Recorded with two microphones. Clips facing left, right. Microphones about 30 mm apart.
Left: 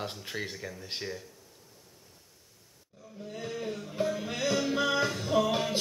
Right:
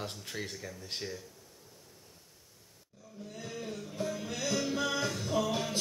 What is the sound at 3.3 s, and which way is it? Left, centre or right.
Music, centre.